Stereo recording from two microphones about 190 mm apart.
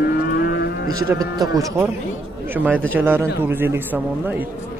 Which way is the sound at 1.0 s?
20° right (ahead or behind).